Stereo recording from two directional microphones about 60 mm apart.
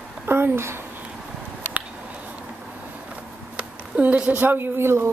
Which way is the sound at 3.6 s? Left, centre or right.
Right.